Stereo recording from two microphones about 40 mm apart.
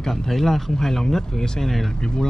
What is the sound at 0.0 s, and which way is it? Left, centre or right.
A man's voice, centre.